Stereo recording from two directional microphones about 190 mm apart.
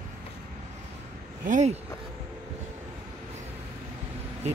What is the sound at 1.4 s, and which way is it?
Speech, 35° right (ahead or behind).